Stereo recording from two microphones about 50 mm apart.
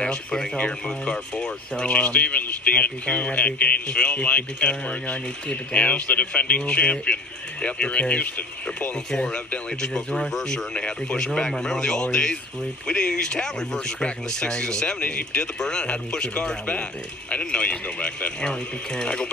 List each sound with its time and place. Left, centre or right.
0.0 s speech: centre
9.5 s speech: centre